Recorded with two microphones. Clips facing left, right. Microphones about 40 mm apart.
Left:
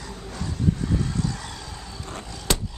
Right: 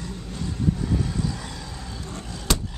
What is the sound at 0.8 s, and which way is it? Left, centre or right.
Vehicle, centre.